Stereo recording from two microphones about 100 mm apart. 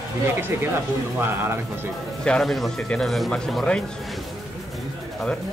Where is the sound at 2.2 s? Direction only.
5° left (ahead or behind).